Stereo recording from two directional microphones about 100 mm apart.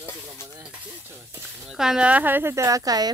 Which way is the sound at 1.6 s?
5° right (ahead or behind).